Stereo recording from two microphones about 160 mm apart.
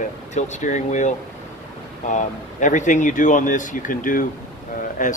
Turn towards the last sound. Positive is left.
turn(degrees=55)  # may be behind; listen again after turning